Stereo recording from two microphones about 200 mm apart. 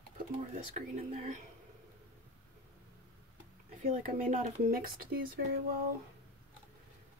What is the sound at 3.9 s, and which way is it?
Speech, 40° right (ahead or behind).